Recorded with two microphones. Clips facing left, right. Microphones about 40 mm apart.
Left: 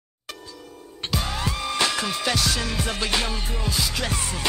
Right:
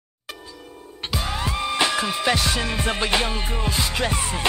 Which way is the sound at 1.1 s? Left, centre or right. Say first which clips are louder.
Right 1 dB; centre.